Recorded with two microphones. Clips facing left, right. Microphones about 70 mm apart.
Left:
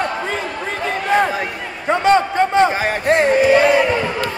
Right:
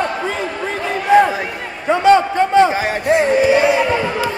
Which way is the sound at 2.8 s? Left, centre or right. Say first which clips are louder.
Even; left.